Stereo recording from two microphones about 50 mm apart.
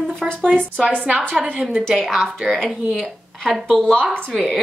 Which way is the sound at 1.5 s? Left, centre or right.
Centre.